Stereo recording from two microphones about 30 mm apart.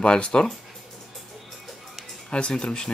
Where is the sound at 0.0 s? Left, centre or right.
Left.